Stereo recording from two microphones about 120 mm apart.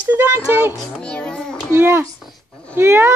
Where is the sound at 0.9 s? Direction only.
10° left (ahead or behind).